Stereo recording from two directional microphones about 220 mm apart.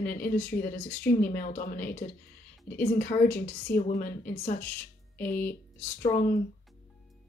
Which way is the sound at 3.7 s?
40° left (ahead or behind).